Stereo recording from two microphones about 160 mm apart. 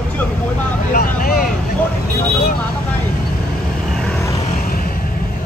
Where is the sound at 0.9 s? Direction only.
70° left (ahead or behind).